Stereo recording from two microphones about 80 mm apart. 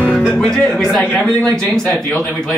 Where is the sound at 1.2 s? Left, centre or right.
Centre.